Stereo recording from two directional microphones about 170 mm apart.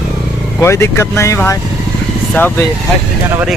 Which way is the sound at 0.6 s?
15° left (ahead or behind).